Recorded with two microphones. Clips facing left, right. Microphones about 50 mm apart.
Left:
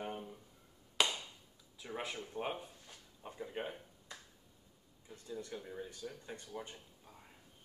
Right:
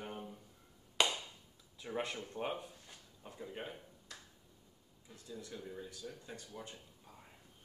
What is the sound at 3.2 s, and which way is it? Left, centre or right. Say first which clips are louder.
Speech: left 3 dB; centre.